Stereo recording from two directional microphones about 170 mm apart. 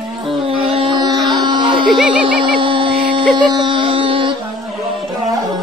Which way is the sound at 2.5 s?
30° right (ahead or behind).